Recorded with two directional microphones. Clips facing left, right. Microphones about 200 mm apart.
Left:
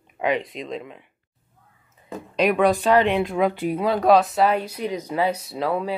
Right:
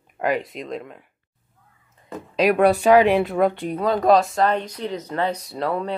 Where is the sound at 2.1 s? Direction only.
Centre (ahead or behind).